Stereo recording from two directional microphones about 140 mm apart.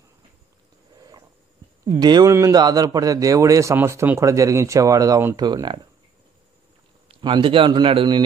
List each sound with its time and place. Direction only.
2.0 s a man's voice: 30° right (ahead or behind)
7.1 s a man's voice: 35° right (ahead or behind)